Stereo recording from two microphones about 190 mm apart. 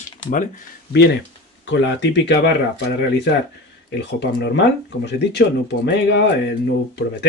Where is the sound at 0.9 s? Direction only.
60° left (ahead or behind).